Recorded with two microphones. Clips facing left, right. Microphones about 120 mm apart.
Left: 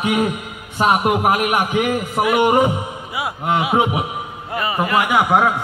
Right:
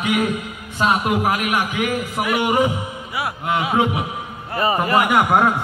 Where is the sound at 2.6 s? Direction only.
20° left (ahead or behind).